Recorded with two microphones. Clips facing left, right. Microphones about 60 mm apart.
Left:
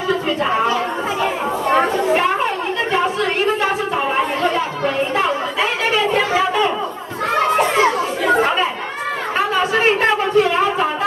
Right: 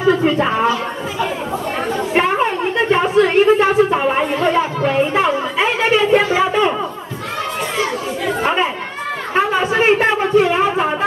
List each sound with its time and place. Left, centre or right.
2.9 s chatter: right
7.3 s chatter: left
9.4 s a sound: centre